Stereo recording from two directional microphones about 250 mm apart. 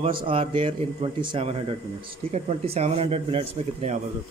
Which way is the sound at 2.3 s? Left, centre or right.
Right.